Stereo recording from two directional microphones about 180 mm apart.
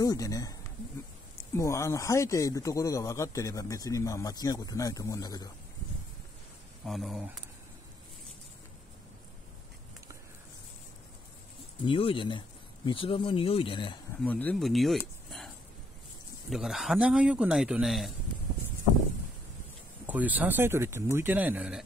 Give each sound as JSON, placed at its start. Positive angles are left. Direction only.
{"t": 0.0, "sound": "speech", "side_deg": 20}
{"t": 6.8, "sound": "speech", "side_deg": 0}
{"t": 11.8, "sound": "speech", "side_deg": 30}
{"t": 14.2, "sound": "speech", "side_deg": 10}
{"t": 20.1, "sound": "speech", "side_deg": -10}